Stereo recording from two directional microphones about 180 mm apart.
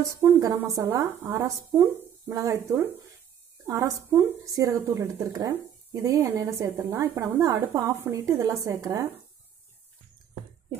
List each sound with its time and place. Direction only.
0.2 s speech: 15° right (ahead or behind)